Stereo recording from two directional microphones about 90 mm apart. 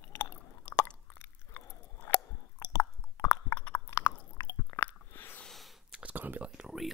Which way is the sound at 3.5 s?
15° left (ahead or behind).